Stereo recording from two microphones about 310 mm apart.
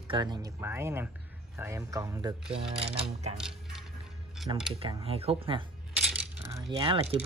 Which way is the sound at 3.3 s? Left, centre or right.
Centre.